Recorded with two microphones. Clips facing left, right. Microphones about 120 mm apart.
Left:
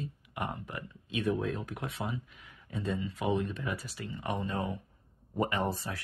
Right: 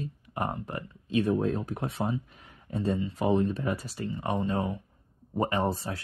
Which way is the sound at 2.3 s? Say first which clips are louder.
Right 5 dB; 40° right (ahead or behind).